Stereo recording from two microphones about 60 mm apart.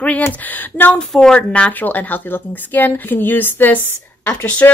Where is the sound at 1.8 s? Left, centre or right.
Left.